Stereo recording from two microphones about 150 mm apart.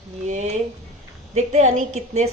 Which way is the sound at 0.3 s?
50° right (ahead or behind).